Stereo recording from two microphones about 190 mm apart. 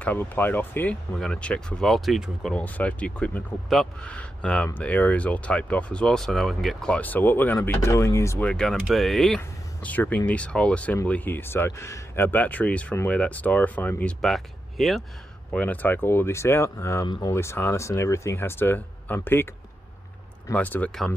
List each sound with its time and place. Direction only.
0.0 s speech: 10° left (ahead or behind)
20.4 s speech: 10° left (ahead or behind)